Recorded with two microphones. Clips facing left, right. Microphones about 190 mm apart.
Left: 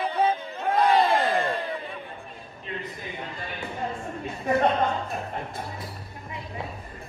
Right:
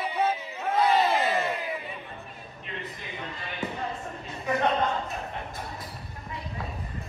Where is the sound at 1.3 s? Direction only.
35° left (ahead or behind).